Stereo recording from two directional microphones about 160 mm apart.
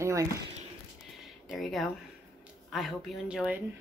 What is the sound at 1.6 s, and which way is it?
Speech, centre (ahead or behind).